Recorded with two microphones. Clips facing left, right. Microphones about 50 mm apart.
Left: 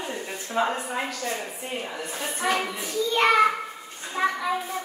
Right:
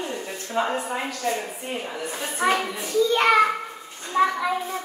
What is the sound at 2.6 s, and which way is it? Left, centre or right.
Speech, centre.